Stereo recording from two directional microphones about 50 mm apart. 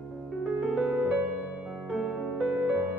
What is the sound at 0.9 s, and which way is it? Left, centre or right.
Music, centre.